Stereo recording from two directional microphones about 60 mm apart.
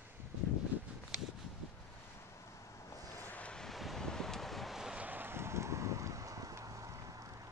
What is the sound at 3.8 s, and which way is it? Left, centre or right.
Wind, centre.